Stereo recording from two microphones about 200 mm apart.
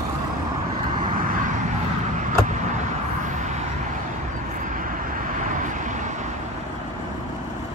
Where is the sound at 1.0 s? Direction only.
40° right (ahead or behind).